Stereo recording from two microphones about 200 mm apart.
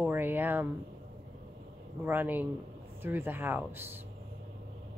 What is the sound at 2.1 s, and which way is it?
A woman's voice, 10° right (ahead or behind).